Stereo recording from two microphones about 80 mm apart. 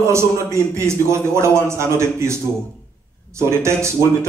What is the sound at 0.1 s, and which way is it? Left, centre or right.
A man's voice, right.